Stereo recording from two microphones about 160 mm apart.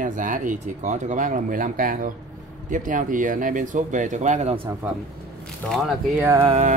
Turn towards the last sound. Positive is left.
turn(degrees=-45)  # may be behind; listen again after turning